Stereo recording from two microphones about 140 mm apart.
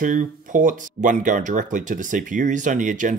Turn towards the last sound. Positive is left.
turn(degrees=-65)  # may be behind; listen again after turning